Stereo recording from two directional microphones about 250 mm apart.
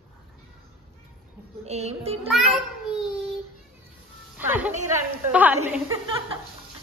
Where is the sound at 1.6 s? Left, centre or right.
Right.